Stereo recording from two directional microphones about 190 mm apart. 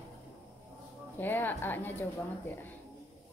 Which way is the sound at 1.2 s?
10° left (ahead or behind).